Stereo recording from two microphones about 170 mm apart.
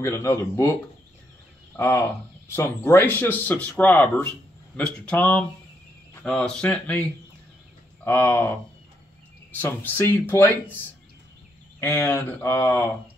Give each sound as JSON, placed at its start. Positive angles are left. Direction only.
{"t": 0.0, "sound": "speech", "side_deg": 15}
{"t": 1.8, "sound": "a man's voice", "side_deg": 15}
{"t": 8.0, "sound": "speech", "side_deg": 15}
{"t": 11.8, "sound": "speech", "side_deg": 15}